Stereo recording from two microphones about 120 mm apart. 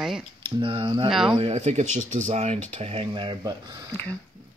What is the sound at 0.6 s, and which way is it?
Speech, 45° right (ahead or behind).